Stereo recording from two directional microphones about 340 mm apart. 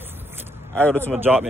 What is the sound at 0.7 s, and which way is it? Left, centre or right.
Speech, centre.